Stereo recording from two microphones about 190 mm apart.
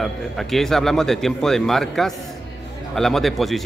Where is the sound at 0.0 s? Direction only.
Centre (ahead or behind).